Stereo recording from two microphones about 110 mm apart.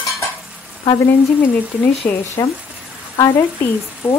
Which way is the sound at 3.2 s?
25° left (ahead or behind).